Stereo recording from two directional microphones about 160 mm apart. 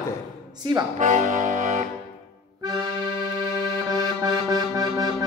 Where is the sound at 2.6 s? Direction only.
25° right (ahead or behind).